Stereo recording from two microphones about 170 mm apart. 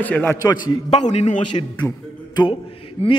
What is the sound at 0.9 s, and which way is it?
Speech, 40° left (ahead or behind).